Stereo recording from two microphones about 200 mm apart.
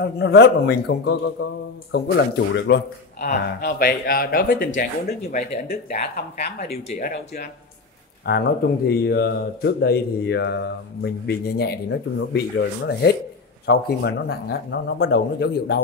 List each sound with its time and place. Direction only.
0.0 s a man's voice: 55° left (ahead or behind); by 5.6 s 40° left (ahead or behind)
5.7 s speech: 50° left (ahead or behind)
6.6 s speech: 30° left (ahead or behind)
7.0 s a man's voice: 45° left (ahead or behind)